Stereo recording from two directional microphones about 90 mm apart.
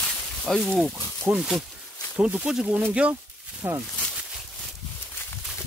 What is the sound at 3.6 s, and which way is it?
Speech, 25° right (ahead or behind).